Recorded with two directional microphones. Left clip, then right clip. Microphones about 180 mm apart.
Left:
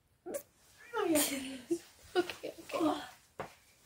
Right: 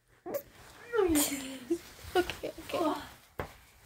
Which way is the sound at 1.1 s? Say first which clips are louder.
Right 1 dB; centre (ahead or behind).